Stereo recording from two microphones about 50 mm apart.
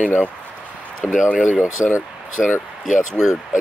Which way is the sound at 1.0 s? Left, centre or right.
Centre.